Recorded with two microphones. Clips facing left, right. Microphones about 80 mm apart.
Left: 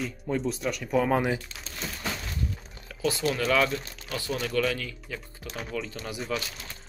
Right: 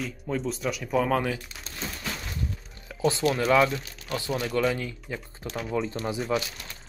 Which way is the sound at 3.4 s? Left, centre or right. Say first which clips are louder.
Right 3 dB; centre.